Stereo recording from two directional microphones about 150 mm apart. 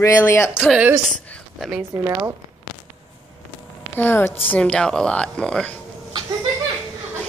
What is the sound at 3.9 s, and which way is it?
Speech, 15° left (ahead or behind).